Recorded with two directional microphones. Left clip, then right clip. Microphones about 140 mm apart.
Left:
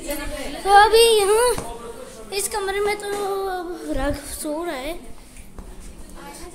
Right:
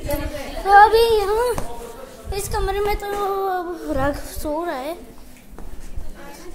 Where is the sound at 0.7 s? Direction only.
20° left (ahead or behind).